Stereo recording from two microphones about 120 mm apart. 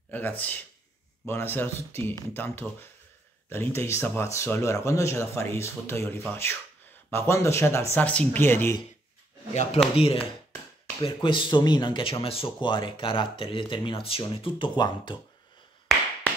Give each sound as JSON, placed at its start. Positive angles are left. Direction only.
{"t": 0.1, "sound": "speech", "side_deg": 15}
{"t": 9.5, "sound": "speech", "side_deg": 75}
{"t": 9.9, "sound": "speech", "side_deg": 50}